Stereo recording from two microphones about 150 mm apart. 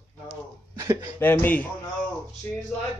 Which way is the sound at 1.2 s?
15° left (ahead or behind).